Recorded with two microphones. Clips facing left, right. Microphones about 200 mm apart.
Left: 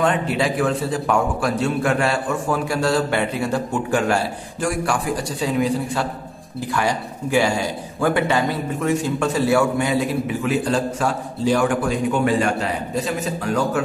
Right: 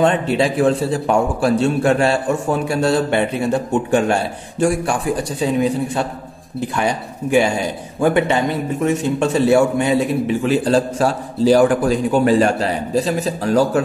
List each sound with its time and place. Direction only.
0.0 s a man's voice: 25° right (ahead or behind)